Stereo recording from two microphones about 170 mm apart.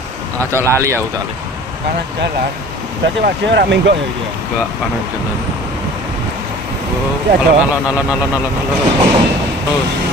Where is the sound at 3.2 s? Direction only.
70° right (ahead or behind).